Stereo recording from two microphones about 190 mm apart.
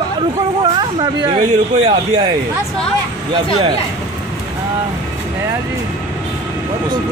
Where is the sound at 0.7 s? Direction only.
20° right (ahead or behind).